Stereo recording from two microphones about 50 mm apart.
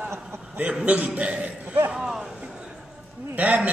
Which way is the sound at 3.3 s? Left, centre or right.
Right.